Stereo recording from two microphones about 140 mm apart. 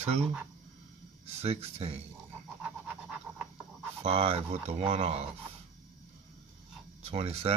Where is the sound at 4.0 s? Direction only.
45° right (ahead or behind).